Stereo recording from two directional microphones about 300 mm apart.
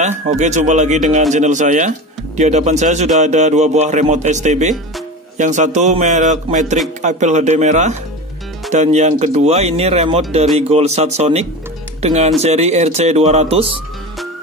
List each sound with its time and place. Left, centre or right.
0.2 s speech: right